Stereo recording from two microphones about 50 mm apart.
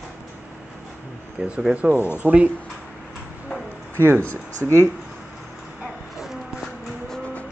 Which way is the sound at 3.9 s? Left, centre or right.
Right.